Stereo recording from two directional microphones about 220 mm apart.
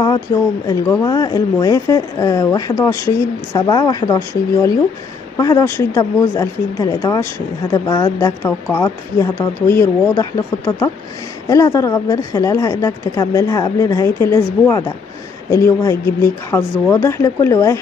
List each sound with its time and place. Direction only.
0.3 s speech: 15° left (ahead or behind)